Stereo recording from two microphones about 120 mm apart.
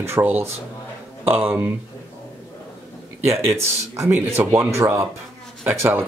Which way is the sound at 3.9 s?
25° right (ahead or behind).